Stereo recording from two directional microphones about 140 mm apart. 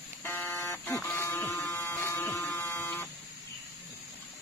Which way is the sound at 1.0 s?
15° left (ahead or behind).